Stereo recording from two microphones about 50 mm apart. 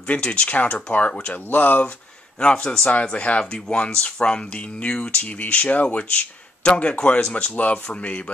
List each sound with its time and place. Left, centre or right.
0.0 s speech: left
1.5 s speech: left
2.4 s speech: centre